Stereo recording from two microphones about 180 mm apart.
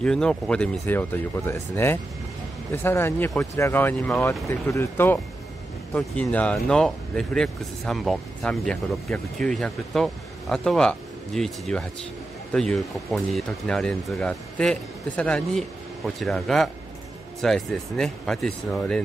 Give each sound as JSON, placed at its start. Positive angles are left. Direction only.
{"t": 0.0, "sound": "speech", "side_deg": 5}